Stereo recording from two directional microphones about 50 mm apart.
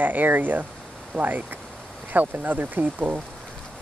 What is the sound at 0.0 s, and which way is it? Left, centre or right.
Speech, right.